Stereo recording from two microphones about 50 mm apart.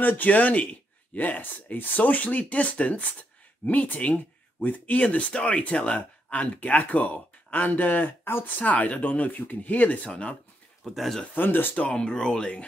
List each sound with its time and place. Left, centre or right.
0.0 s speech: left
8.2 s speech: left
8.5 s speech: left
10.8 s speech: centre
11.3 s speech: left
11.7 s speech: left